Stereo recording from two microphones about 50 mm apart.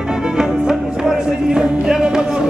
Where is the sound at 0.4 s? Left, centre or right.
Centre.